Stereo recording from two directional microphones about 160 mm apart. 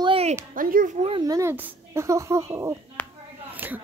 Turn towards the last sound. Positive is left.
turn(degrees=-10)  # may be behind; listen again after turning